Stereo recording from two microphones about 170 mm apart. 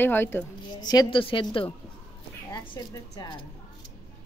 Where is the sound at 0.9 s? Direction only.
25° left (ahead or behind).